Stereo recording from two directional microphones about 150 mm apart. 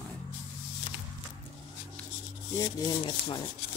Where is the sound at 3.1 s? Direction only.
30° left (ahead or behind).